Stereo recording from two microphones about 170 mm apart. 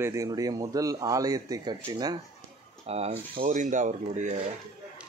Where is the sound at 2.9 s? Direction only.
35° right (ahead or behind).